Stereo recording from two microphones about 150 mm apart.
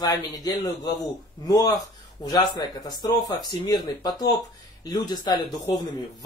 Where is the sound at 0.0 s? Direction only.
25° left (ahead or behind).